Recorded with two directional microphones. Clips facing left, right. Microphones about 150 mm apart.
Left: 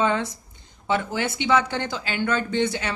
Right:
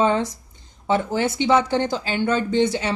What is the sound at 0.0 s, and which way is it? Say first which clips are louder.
A woman's voice: right 3 dB; 30° right (ahead or behind).